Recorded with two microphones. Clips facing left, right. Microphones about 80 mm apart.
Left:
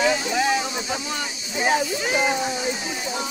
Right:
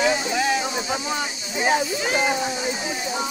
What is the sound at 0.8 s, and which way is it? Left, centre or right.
Speech, centre.